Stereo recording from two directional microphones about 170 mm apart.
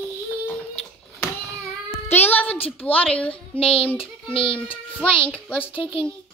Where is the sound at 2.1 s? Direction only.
10° left (ahead or behind).